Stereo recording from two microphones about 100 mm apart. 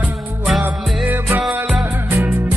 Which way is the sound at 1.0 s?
20° right (ahead or behind).